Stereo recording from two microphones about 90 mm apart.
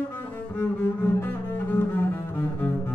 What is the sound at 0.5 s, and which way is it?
Cello, 25° left (ahead or behind).